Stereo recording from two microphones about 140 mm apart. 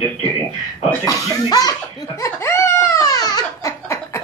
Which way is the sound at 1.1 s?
25° left (ahead or behind).